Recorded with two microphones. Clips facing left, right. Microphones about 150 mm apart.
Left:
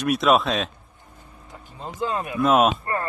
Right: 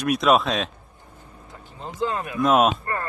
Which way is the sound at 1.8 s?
20° left (ahead or behind).